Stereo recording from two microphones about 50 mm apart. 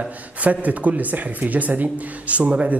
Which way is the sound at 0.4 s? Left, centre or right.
Right.